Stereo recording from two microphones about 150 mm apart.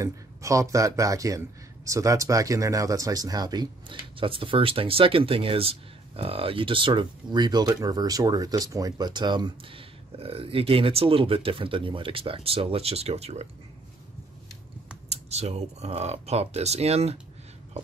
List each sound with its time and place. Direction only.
0.0 s a man's voice: 20° right (ahead or behind); by 13.5 s 45° right (ahead or behind)
15.0 s speech: 45° right (ahead or behind)